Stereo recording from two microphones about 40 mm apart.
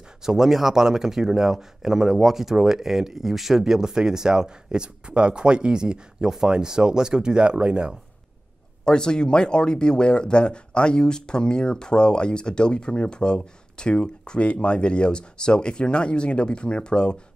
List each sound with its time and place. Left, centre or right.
0.2 s speech: centre
8.8 s speech: left